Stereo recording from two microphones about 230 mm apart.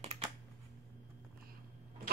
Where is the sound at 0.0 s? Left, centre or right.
Right.